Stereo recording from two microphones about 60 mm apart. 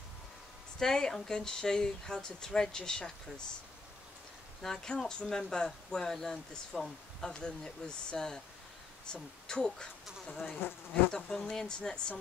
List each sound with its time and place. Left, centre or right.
0.7 s speech: centre
4.6 s speech: centre
10.6 s bee: left
11.1 s speech: centre